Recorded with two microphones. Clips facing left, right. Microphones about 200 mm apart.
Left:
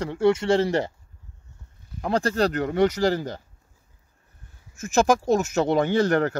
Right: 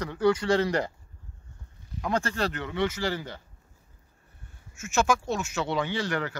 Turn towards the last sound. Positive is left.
turn(degrees=45)  # may be behind; listen again after turning